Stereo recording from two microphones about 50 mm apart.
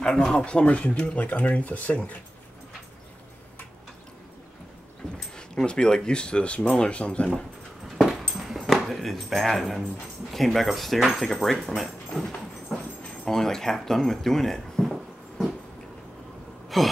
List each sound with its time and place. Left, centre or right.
0.0 s speech: centre; by 2.1 s left
5.3 s speech: centre
8.0 s a sound: centre
10.3 s speech: centre
12.7 s dog: centre
13.2 s speech: centre
16.6 s a sound: centre